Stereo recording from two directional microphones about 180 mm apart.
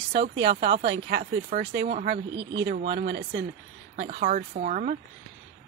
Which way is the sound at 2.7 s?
65° right (ahead or behind).